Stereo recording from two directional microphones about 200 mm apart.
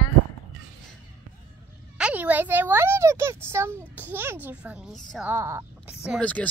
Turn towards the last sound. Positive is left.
turn(degrees=5)  # may be behind; listen again after turning